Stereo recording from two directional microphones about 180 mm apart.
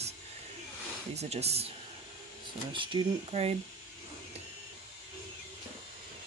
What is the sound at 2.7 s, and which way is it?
Speech, 30° right (ahead or behind).